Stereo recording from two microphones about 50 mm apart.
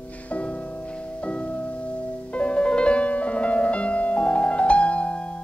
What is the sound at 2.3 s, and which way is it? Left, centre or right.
Piano, left.